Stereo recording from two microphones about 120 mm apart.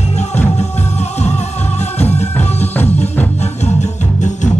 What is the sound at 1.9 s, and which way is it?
Music, 65° left (ahead or behind).